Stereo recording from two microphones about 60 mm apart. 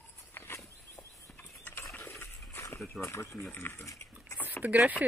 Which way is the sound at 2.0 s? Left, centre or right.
Left.